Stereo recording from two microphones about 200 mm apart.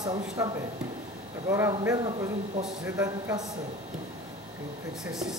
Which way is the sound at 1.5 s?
15° right (ahead or behind).